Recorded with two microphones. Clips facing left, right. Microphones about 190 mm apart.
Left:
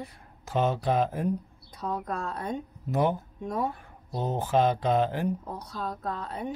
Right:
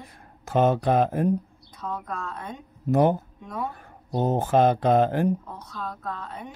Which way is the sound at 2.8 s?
45° right (ahead or behind).